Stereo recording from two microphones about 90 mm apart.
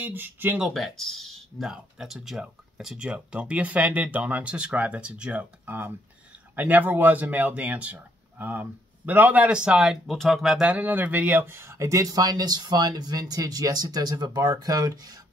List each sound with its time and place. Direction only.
0.0 s speech: 20° right (ahead or behind)
0.7 s speech: 5° left (ahead or behind)
10.7 s speech: 20° right (ahead or behind); by 15.1 s 45° right (ahead or behind)